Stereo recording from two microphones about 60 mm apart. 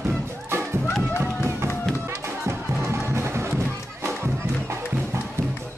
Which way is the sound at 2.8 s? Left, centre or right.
Right.